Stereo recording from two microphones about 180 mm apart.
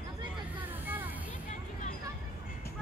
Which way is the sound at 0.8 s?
10° right (ahead or behind).